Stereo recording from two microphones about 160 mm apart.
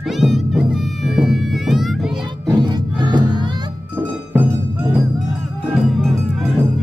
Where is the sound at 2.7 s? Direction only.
30° right (ahead or behind).